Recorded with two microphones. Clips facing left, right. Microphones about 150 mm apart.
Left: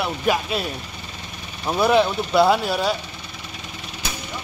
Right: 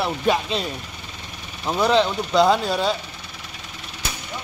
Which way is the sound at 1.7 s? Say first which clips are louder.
Left 1 dB; 10° left (ahead or behind).